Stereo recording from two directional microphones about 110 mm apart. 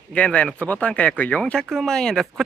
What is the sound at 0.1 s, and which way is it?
Speech, 10° left (ahead or behind).